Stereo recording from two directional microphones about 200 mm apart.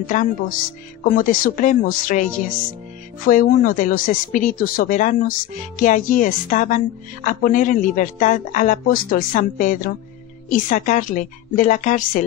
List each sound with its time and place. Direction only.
0.0 s speech: 40° left (ahead or behind)